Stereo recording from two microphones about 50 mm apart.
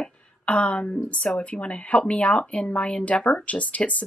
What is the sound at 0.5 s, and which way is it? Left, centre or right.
Speech, left.